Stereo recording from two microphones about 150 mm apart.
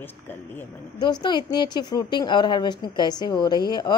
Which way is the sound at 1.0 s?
30° left (ahead or behind).